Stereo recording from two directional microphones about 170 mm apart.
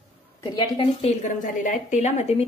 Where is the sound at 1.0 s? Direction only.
50° left (ahead or behind).